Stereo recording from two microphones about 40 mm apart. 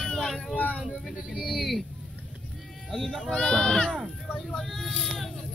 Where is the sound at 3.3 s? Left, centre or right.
Left.